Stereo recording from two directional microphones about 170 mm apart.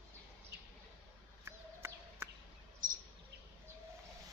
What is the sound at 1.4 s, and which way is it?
Chicken, 15° right (ahead or behind).